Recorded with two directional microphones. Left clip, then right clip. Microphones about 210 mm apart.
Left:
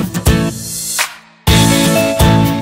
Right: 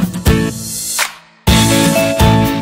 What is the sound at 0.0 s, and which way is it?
Music, centre (ahead or behind).